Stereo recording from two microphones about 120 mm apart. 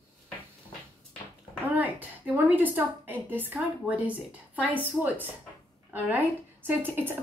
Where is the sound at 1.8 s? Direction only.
15° right (ahead or behind).